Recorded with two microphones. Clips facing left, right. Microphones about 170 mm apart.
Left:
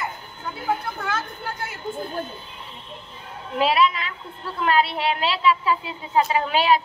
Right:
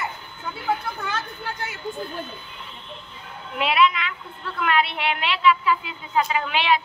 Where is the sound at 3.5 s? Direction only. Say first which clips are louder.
Left 1 dB; 35° left (ahead or behind).